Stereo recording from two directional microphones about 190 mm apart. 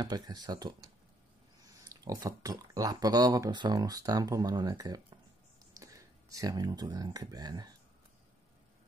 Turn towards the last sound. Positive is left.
turn(degrees=-20)  # may be behind; listen again after turning